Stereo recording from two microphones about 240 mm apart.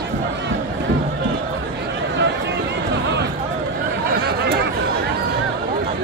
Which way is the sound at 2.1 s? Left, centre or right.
Right.